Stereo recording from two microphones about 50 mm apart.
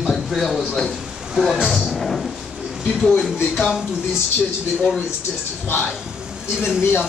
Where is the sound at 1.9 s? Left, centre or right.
Centre.